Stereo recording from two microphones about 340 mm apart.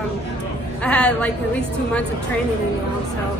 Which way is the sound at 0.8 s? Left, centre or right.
Centre.